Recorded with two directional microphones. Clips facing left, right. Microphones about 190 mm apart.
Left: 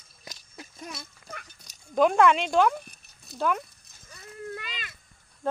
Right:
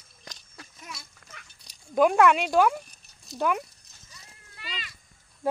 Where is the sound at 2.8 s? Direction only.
60° left (ahead or behind).